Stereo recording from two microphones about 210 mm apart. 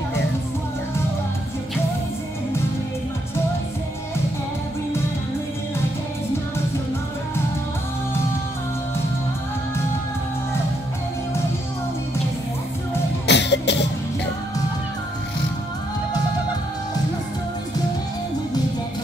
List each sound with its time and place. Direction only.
13.3 s cough: 55° left (ahead or behind)